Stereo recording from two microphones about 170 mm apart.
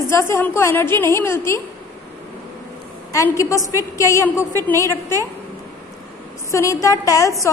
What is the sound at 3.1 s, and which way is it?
A woman's voice, 20° left (ahead or behind).